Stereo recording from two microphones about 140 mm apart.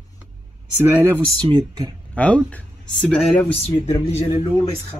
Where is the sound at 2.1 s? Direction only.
10° left (ahead or behind).